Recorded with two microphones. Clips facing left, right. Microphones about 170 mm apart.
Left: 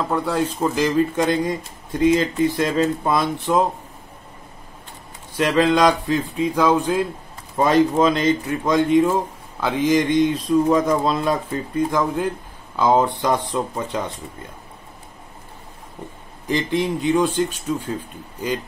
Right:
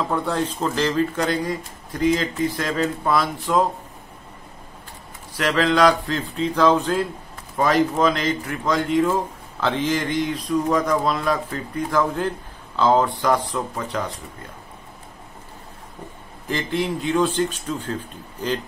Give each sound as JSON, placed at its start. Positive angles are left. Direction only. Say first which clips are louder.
{"t": 0.1, "sound": "speech", "louder": "left 2 dB", "side_deg": 5}
{"t": 5.3, "sound": "speech", "louder": "left 3 dB", "side_deg": 20}
{"t": 7.5, "sound": "speech", "louder": "left 3 dB", "side_deg": 25}
{"t": 16.4, "sound": "speech", "louder": "left 3 dB", "side_deg": 20}